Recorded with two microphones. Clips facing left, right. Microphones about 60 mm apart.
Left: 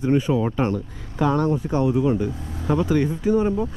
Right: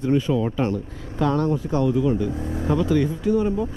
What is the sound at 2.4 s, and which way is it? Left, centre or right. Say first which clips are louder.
Speech: right 6 dB; right.